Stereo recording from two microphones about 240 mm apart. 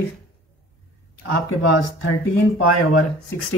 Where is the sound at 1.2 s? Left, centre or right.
Left.